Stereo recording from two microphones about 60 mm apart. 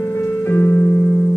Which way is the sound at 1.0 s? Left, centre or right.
Left.